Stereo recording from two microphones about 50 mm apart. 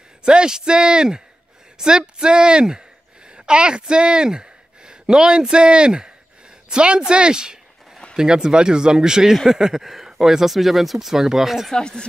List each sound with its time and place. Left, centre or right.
0.2 s speech: centre
11.7 s speech: centre